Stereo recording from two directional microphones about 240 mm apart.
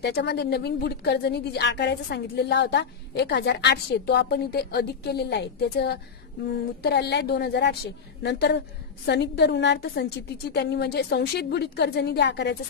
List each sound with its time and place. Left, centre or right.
0.0 s a woman's voice: left